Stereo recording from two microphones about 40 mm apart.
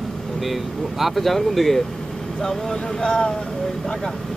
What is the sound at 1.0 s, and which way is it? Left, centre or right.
Speech, centre.